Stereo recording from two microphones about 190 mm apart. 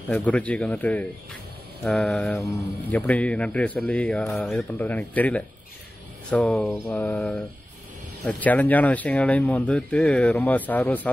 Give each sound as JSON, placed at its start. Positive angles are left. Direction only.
{"t": 0.1, "sound": "speech", "side_deg": 5}
{"t": 6.3, "sound": "mantra", "side_deg": 5}
{"t": 8.2, "sound": "speech", "side_deg": 10}